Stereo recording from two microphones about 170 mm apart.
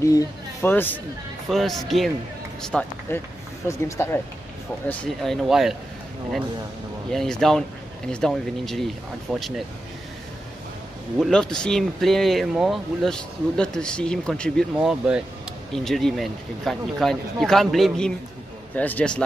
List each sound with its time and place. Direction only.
0.0 s speech: 20° left (ahead or behind)
1.5 s speech: centre (ahead or behind)
4.8 s speech: 5° left (ahead or behind)
7.1 s speech: 5° left (ahead or behind)
11.1 s speech: centre (ahead or behind)